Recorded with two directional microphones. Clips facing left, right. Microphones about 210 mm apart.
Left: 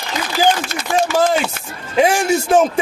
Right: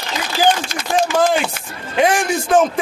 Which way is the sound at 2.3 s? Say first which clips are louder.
Left 1 dB; 10° left (ahead or behind).